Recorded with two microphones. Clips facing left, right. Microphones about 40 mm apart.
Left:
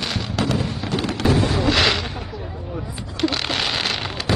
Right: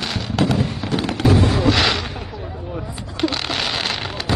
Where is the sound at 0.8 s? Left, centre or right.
Right.